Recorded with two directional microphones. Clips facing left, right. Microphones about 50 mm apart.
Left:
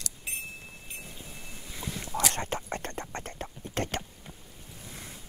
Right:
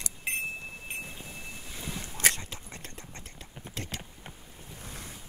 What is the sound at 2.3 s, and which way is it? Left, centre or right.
Whispering, left.